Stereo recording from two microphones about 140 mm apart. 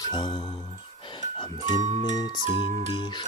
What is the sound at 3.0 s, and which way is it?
Music, 30° left (ahead or behind).